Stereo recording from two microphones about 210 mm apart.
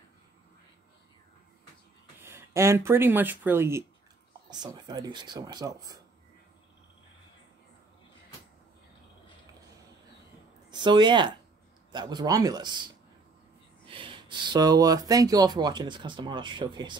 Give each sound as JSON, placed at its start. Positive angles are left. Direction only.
{"t": 2.1, "sound": "speech", "side_deg": -10}
{"t": 10.7, "sound": "speech", "side_deg": -20}